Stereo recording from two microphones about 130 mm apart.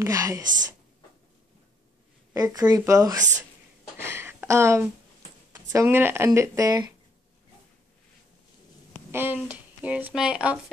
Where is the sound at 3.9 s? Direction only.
20° right (ahead or behind).